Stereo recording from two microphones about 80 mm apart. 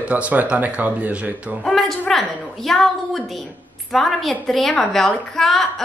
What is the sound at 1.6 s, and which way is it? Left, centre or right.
A woman's voice, centre.